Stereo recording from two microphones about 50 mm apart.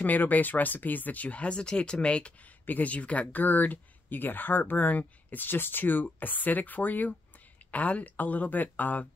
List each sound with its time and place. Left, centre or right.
0.0 s speech: left
2.6 s speech: left